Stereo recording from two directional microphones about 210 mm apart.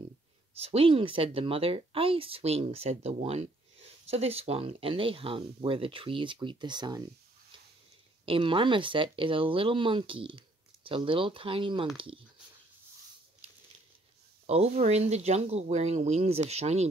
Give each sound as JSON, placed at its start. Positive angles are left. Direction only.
{"t": 0.6, "sound": "speech", "side_deg": -25}
{"t": 8.3, "sound": "speech", "side_deg": -25}
{"t": 14.4, "sound": "speech", "side_deg": -30}